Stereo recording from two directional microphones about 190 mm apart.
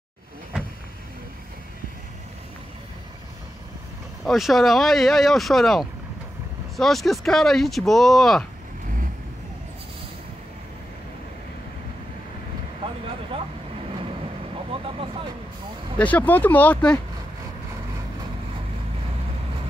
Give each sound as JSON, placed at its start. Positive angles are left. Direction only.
{"t": 4.2, "sound": "speech", "side_deg": 0}
{"t": 14.7, "sound": "vehicle", "side_deg": -30}
{"t": 16.0, "sound": "speech", "side_deg": 10}